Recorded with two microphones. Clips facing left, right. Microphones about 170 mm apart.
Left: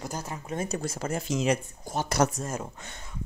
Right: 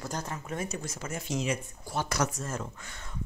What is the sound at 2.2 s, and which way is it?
Speech, 60° left (ahead or behind).